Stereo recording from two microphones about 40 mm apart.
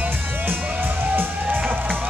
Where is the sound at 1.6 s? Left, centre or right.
Right.